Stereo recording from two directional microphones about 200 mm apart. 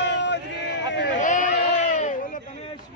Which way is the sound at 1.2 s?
40° left (ahead or behind).